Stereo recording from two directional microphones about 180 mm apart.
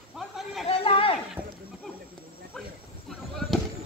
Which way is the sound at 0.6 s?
30° left (ahead or behind).